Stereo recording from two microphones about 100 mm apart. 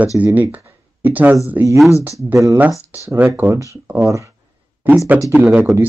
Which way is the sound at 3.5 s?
30° right (ahead or behind).